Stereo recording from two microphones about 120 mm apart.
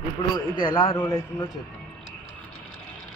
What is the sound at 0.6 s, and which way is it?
Speech, 40° left (ahead or behind).